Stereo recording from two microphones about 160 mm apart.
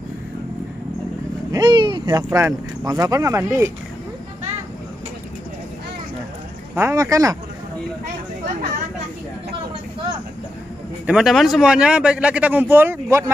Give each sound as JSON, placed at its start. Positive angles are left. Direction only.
{"t": 1.5, "sound": "a sound", "side_deg": -25}
{"t": 2.3, "sound": "speech", "side_deg": -20}
{"t": 6.7, "sound": "speech", "side_deg": -15}
{"t": 8.5, "sound": "speech", "side_deg": -60}
{"t": 11.1, "sound": "speech", "side_deg": 0}